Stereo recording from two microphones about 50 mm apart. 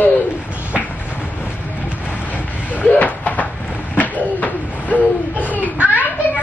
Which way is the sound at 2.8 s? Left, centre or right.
Left.